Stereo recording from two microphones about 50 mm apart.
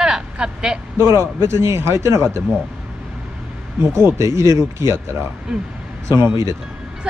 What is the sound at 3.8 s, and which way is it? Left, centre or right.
Speech, right.